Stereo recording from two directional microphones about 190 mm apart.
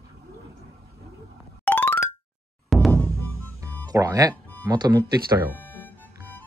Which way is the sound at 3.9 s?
20° right (ahead or behind).